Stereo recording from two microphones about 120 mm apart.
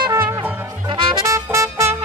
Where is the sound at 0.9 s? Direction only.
40° right (ahead or behind).